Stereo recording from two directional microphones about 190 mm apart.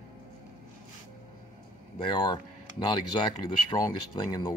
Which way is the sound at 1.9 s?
25° left (ahead or behind).